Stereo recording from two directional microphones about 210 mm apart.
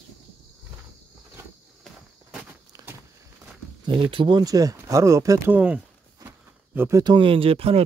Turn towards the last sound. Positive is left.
turn(degrees=-30)  # may be behind; listen again after turning